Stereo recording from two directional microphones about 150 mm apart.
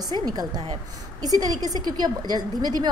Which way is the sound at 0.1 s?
25° right (ahead or behind).